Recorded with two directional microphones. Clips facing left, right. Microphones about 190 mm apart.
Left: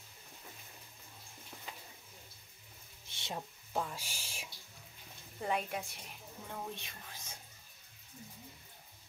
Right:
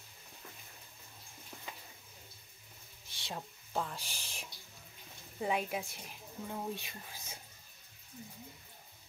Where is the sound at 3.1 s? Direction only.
20° left (ahead or behind).